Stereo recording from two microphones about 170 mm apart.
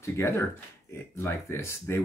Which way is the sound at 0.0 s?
15° left (ahead or behind).